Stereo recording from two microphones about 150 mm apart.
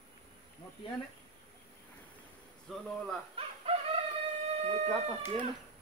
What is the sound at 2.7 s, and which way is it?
Speech, centre (ahead or behind).